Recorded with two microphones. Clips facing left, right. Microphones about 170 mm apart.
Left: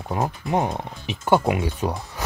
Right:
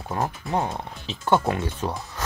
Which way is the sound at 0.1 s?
15° left (ahead or behind).